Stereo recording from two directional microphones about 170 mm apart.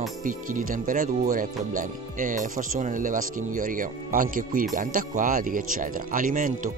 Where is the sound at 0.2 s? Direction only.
50° right (ahead or behind).